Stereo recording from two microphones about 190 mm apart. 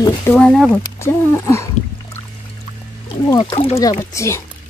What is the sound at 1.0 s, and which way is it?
Speech, 15° left (ahead or behind).